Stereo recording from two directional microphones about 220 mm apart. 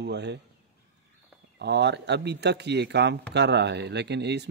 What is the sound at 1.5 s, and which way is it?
Speech, 50° right (ahead or behind).